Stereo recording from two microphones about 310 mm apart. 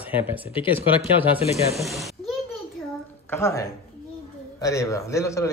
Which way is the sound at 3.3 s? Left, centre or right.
Centre.